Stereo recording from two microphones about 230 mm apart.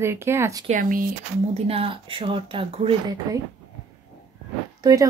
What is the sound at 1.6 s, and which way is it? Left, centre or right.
Speech, right.